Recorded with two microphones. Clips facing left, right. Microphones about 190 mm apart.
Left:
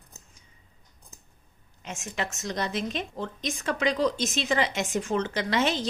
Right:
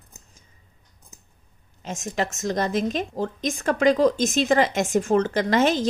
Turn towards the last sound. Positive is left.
turn(degrees=-45)  # may be behind; listen again after turning